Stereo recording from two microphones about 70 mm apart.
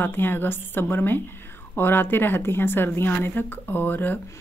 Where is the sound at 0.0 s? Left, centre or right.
Left.